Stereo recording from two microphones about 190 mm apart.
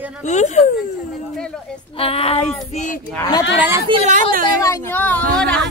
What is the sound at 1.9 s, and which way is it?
Speech, 30° left (ahead or behind).